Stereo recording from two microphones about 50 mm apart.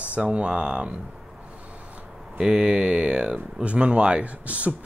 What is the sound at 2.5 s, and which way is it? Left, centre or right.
Speech, right.